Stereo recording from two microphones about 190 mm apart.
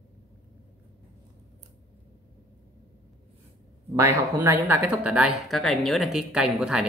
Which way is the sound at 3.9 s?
15° right (ahead or behind).